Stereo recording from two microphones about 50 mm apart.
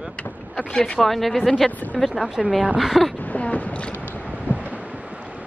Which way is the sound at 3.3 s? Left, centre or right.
Left.